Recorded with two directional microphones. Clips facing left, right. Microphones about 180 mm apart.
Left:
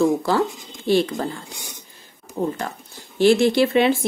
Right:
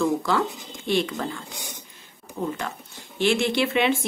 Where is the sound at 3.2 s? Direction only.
35° left (ahead or behind).